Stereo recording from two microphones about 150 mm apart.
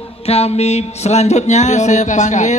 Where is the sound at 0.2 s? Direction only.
45° left (ahead or behind).